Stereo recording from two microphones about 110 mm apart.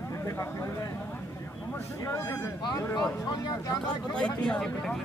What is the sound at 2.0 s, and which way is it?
A man's voice, 25° left (ahead or behind).